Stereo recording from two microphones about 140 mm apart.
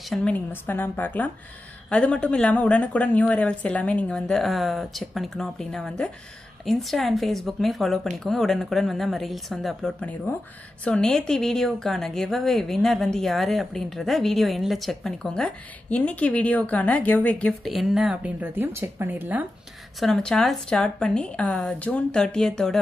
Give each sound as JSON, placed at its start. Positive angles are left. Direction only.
{"t": 0.1, "sound": "a woman's voice", "side_deg": 10}
{"t": 20.0, "sound": "a woman's voice", "side_deg": 5}